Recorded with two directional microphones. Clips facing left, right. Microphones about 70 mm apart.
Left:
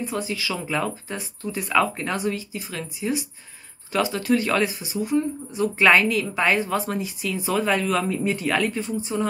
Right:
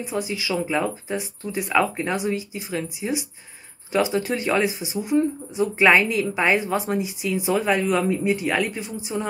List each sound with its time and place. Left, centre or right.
0.0 s speech: centre